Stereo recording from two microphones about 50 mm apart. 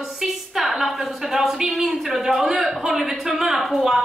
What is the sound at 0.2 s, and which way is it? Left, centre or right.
A woman's voice, centre.